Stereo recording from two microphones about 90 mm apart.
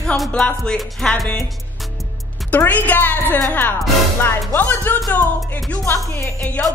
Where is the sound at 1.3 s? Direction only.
Centre (ahead or behind).